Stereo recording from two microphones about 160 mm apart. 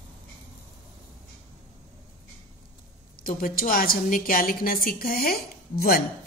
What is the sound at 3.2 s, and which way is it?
A woman's voice, 65° left (ahead or behind).